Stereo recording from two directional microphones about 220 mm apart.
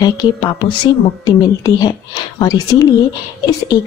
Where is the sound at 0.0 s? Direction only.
20° left (ahead or behind).